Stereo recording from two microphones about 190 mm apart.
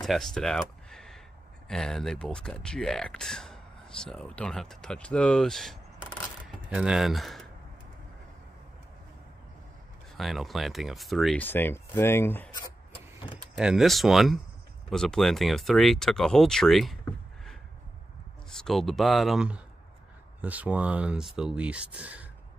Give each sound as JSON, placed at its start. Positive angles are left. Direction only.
{"t": 0.0, "sound": "a sound", "side_deg": 0}
{"t": 1.7, "sound": "speech", "side_deg": 0}
{"t": 10.1, "sound": "speech", "side_deg": 0}
{"t": 12.5, "sound": "vehicle", "side_deg": 25}
{"t": 13.6, "sound": "speech", "side_deg": -5}